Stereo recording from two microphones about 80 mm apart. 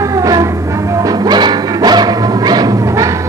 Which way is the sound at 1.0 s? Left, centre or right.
Right.